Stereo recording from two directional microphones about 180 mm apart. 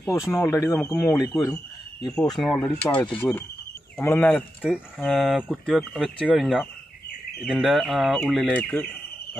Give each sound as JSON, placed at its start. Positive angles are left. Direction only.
{"t": 0.0, "sound": "speech", "side_deg": 15}
{"t": 2.3, "sound": "speech", "side_deg": 5}